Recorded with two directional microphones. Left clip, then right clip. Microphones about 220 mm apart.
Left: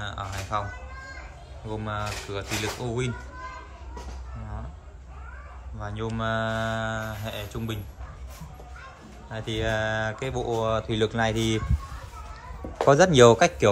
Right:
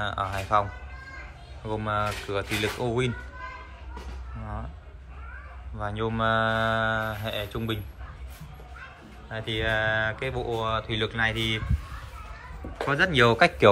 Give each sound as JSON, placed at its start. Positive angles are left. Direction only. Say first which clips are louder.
{"t": 0.0, "sound": "speech", "louder": "right 5 dB", "side_deg": 0}
{"t": 1.7, "sound": "speech", "louder": "right 4 dB", "side_deg": 5}
{"t": 5.8, "sound": "speech", "louder": "right 4 dB", "side_deg": 5}
{"t": 9.3, "sound": "speech", "louder": "right 1 dB", "side_deg": 15}
{"t": 12.7, "sound": "speech", "louder": "left 5 dB", "side_deg": 25}